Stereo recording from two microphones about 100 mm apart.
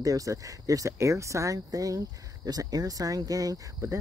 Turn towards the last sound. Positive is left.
turn(degrees=-25)  # may be behind; listen again after turning